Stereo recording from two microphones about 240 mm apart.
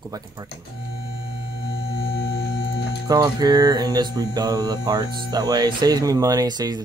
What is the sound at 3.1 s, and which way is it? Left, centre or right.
Speech, centre.